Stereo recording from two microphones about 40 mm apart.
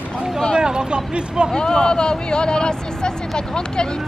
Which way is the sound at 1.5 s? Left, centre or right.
Centre.